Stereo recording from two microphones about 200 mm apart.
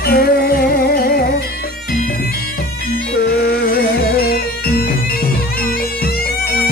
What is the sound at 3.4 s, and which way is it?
Music, 50° left (ahead or behind).